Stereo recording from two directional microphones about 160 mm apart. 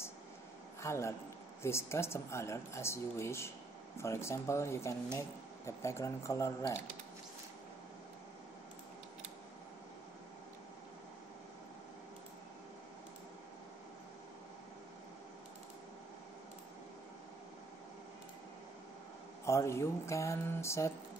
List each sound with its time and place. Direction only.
0.8 s speech: 15° left (ahead or behind)
19.4 s speech: 15° left (ahead or behind)